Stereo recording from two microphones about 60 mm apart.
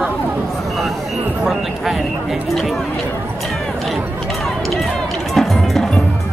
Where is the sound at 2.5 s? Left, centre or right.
Centre.